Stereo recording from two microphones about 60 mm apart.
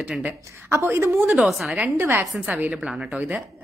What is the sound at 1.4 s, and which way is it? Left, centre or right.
Speech, centre.